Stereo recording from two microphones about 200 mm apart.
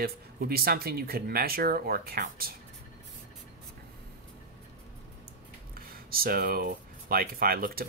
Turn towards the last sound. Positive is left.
turn(degrees=-50)  # may be behind; listen again after turning